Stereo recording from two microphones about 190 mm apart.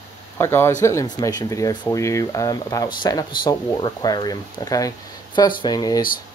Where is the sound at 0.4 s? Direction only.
15° left (ahead or behind).